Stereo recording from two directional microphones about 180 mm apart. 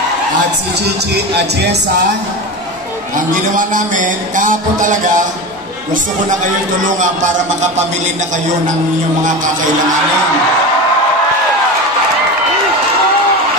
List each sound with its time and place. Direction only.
1.1 s music: 65° right (ahead or behind)
3.5 s a man's voice: 45° right (ahead or behind)